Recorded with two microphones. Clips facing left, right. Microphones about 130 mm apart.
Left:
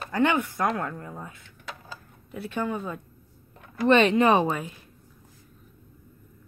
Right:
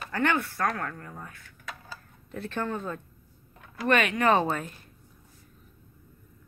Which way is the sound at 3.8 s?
25° left (ahead or behind).